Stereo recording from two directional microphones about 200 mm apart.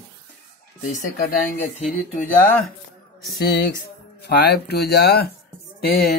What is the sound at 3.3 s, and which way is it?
Speech, 50° left (ahead or behind).